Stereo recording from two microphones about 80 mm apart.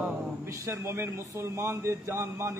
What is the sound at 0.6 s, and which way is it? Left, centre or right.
A man's voice, right.